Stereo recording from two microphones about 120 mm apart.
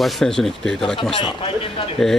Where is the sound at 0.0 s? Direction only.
Centre (ahead or behind).